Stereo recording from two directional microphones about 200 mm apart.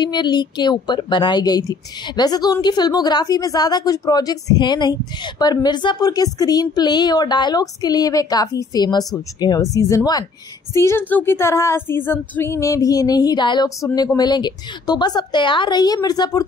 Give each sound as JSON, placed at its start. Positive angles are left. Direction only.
{"t": 0.0, "sound": "a woman's voice", "side_deg": 20}